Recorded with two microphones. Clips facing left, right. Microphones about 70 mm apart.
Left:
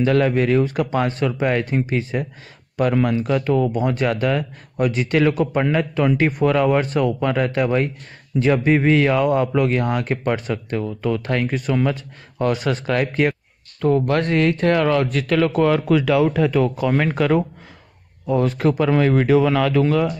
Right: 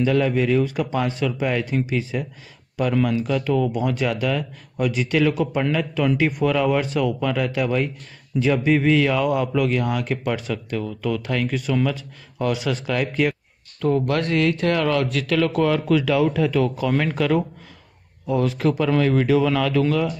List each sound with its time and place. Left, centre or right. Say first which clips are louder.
0.0 s speech: left 2 dB; left